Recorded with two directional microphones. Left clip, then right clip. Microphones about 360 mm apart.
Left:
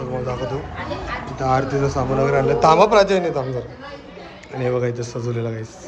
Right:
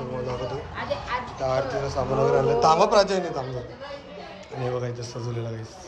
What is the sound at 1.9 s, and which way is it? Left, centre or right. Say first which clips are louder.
A man's voice: left 1 dB; centre.